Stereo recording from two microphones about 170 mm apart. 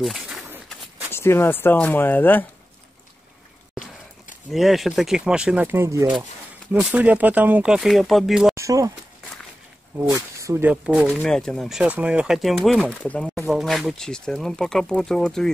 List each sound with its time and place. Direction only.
0.0 s speech: centre (ahead or behind)
1.1 s speech: 15° left (ahead or behind)
4.5 s speech: centre (ahead or behind)
8.5 s speech: 20° right (ahead or behind)
9.9 s speech: 20° right (ahead or behind); by 15.5 s 5° left (ahead or behind)